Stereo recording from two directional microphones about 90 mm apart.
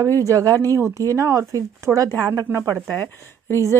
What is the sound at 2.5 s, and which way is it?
Speech, 25° right (ahead or behind).